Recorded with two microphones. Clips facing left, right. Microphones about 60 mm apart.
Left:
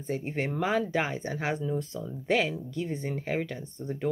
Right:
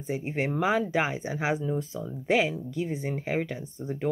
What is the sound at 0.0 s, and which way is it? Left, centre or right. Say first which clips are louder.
Speech: right 2 dB; centre.